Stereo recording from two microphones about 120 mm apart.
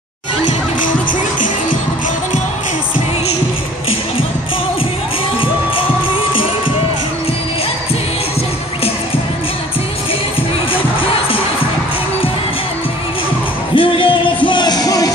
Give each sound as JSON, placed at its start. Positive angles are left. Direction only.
{"t": 13.7, "sound": "music", "side_deg": 45}